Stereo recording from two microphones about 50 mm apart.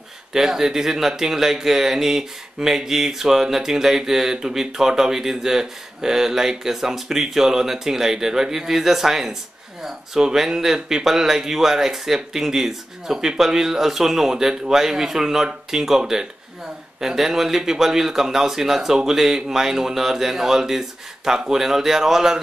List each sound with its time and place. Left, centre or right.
0.3 s speech: centre